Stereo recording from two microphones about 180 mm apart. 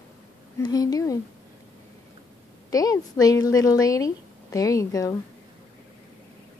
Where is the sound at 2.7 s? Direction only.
20° left (ahead or behind).